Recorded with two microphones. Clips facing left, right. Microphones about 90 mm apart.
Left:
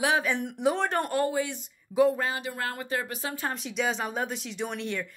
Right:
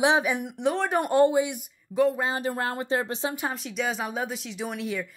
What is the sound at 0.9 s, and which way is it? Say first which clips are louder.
Speech: right 6 dB; 20° right (ahead or behind).